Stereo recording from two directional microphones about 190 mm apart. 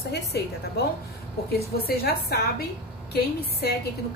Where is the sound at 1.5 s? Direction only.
55° left (ahead or behind).